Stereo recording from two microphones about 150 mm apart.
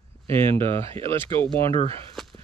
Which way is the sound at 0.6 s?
35° right (ahead or behind).